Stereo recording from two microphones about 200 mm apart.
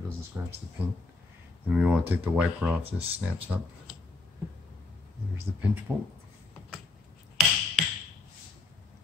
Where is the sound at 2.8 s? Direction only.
30° right (ahead or behind).